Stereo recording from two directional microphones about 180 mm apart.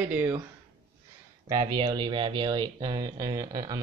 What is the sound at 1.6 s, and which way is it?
Speech, 25° right (ahead or behind).